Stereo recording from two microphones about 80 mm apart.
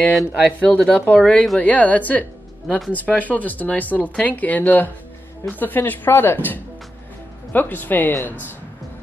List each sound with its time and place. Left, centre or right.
0.5 s speech: centre
1.6 s speech: centre